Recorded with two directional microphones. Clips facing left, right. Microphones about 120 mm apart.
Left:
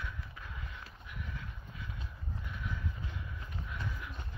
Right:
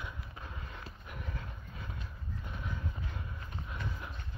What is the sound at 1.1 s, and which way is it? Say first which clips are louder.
Horse: right 1 dB; 40° right (ahead or behind).